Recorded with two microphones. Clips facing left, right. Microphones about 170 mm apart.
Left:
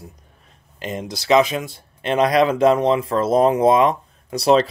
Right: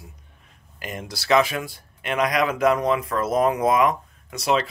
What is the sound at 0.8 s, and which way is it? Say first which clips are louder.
Speech: left 6 dB; 20° left (ahead or behind).